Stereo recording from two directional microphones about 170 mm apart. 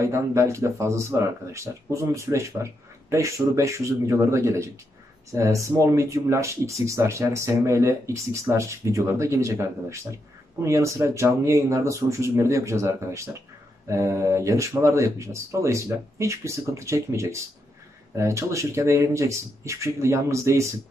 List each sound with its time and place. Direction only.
0.0 s speech: 15° right (ahead or behind)